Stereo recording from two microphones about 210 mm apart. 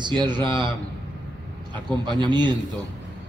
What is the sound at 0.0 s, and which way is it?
Speech, 20° right (ahead or behind).